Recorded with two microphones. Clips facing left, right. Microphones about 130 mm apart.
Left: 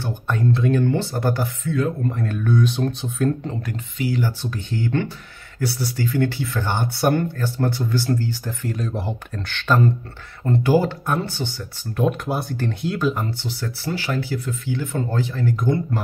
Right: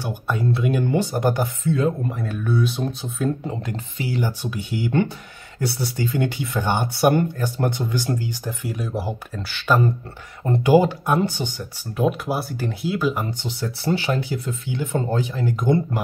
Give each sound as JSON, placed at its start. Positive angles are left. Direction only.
{"t": 0.0, "sound": "speech", "side_deg": -10}
{"t": 2.0, "sound": "speech", "side_deg": -5}
{"t": 3.7, "sound": "speech", "side_deg": -30}
{"t": 4.2, "sound": "speech", "side_deg": -15}
{"t": 5.6, "sound": "speech", "side_deg": -20}
{"t": 12.0, "sound": "speech", "side_deg": -5}